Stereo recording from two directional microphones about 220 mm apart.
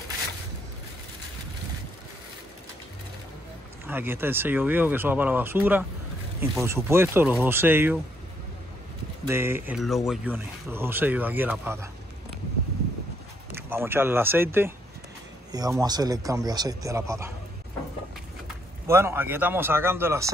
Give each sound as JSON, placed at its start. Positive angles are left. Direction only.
{"t": 3.8, "sound": "speech", "side_deg": -10}
{"t": 9.3, "sound": "speech", "side_deg": -10}
{"t": 13.5, "sound": "speech", "side_deg": -10}
{"t": 18.9, "sound": "speech", "side_deg": -10}